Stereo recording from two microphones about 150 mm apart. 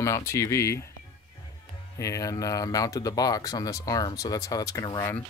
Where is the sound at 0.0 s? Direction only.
20° left (ahead or behind).